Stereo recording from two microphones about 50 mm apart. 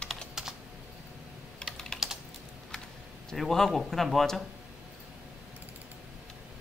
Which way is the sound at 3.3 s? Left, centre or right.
Centre.